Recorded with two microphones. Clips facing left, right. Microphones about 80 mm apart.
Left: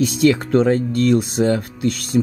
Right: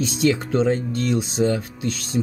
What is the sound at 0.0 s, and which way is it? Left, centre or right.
Speech, left.